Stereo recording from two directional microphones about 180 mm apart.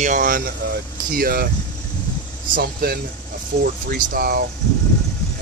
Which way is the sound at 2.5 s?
60° right (ahead or behind).